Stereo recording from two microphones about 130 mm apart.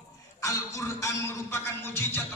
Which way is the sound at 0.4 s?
25° left (ahead or behind).